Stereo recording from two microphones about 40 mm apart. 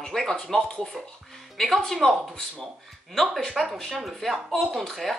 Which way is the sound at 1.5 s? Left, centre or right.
Centre.